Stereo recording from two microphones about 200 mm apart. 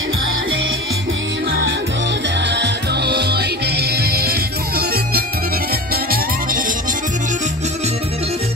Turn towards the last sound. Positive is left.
turn(degrees=-45)  # may be behind; listen again after turning